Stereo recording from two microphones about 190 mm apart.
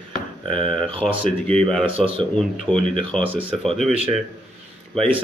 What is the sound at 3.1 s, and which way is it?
Speech, centre (ahead or behind).